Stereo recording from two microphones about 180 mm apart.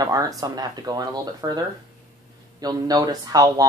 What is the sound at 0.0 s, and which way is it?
Speech, 20° right (ahead or behind).